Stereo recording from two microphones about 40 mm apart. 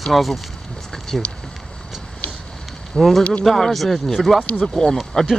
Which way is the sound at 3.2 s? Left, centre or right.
Left.